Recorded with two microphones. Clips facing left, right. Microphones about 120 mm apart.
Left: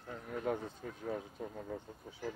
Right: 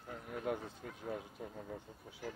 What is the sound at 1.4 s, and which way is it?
Speech, 5° left (ahead or behind).